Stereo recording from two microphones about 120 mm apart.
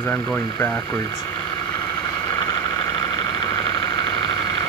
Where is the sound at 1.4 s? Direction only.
35° left (ahead or behind).